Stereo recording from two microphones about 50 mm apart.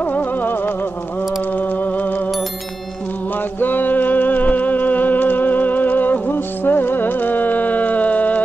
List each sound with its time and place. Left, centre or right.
0.1 s music: left
3.6 s music: left